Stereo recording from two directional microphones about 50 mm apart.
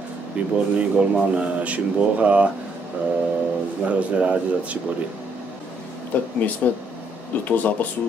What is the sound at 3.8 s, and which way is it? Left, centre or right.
Speech, right.